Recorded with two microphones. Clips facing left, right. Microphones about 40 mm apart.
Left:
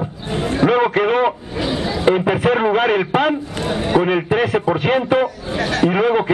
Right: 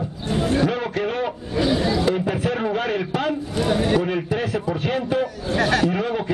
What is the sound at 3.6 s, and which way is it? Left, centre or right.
Speech, centre.